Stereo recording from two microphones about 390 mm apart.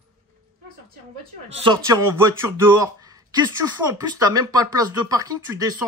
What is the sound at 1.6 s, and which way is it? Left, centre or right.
Speech, centre.